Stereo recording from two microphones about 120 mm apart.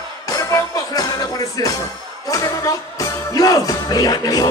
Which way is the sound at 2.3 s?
30° left (ahead or behind).